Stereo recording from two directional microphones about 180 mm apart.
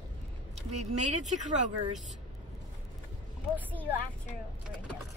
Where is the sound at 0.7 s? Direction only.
40° right (ahead or behind).